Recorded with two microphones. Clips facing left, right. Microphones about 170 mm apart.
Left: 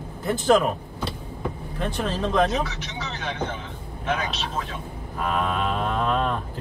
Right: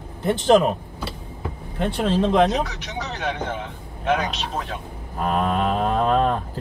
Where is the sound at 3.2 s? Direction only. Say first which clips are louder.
Right 3 dB; 60° right (ahead or behind).